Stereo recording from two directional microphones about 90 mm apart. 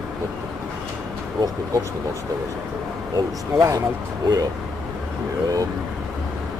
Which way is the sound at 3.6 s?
35° right (ahead or behind).